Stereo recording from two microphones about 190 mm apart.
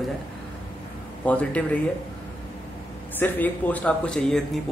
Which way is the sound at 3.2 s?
10° left (ahead or behind).